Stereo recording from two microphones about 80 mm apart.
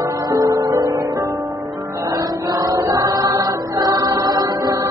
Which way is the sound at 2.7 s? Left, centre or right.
Right.